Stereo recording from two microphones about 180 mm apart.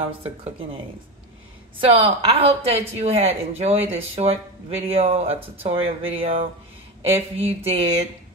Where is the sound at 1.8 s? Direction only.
35° right (ahead or behind).